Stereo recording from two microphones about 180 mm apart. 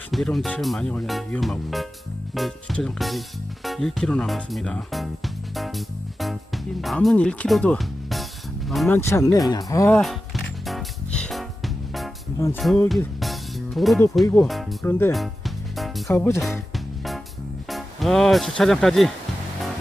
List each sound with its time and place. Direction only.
0.1 s speech: centre (ahead or behind)
8.9 s speech: 15° left (ahead or behind)
9.9 s music: centre (ahead or behind)
12.5 s speech: centre (ahead or behind)
13.2 s music: centre (ahead or behind)
14.4 s speech: centre (ahead or behind)
14.9 s speech: 15° left (ahead or behind)
15.1 s music: centre (ahead or behind)
16.1 s speech: 15° left (ahead or behind)
16.7 s music: centre (ahead or behind)
17.6 s speech: centre (ahead or behind)